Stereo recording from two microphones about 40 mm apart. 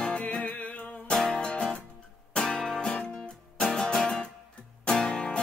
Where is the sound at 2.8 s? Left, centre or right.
Centre.